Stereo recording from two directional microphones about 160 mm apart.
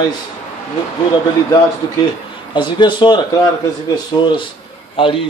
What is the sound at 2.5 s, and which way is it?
A man's voice, 30° left (ahead or behind).